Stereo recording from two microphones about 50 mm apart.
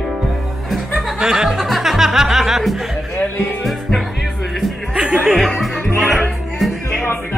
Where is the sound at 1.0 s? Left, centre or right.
Centre.